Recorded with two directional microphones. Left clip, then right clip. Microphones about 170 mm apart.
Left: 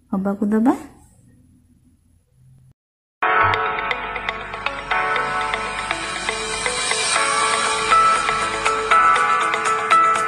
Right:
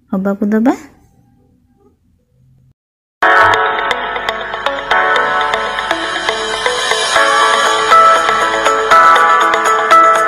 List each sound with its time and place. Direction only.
0.1 s a woman's voice: 25° right (ahead or behind)
3.2 s music: 35° right (ahead or behind)